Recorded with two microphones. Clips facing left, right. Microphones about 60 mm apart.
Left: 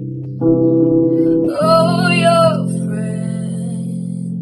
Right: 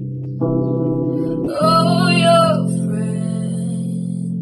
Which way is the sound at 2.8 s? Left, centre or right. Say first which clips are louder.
Even; left.